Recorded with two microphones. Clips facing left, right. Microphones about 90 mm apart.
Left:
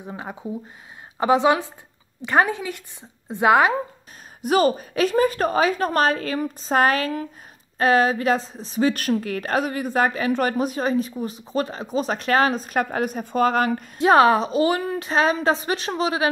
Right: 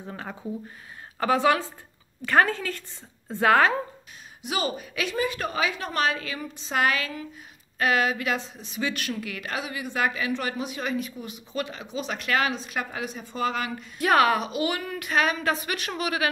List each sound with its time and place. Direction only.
0.0 s a woman's voice: 15° left (ahead or behind)
4.4 s a woman's voice: 45° left (ahead or behind)
13.9 s a woman's voice: 30° left (ahead or behind)